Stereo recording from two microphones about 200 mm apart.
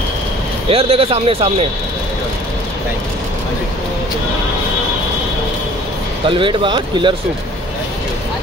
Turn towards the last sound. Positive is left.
turn(degrees=-25)  # may be behind; listen again after turning